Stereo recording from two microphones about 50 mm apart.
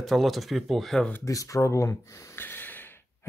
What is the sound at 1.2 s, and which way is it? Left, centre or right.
Speech, left.